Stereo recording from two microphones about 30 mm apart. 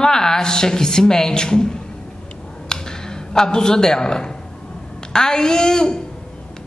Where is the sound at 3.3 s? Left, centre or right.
Left.